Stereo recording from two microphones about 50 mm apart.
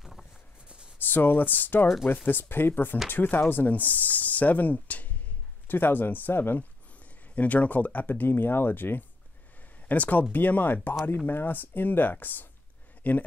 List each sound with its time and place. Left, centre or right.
0.9 s speech: left
5.7 s speech: left
7.3 s speech: left